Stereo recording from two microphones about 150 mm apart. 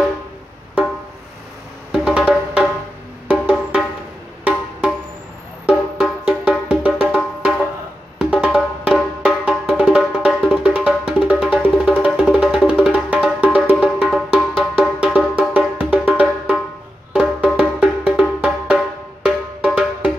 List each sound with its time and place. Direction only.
1.9 s music: 5° right (ahead or behind)
5.7 s music: 5° right (ahead or behind)